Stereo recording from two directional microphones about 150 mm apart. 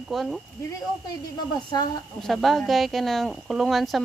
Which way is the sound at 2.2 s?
Centre (ahead or behind).